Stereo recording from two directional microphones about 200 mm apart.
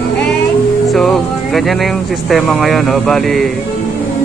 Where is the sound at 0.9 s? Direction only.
Centre (ahead or behind).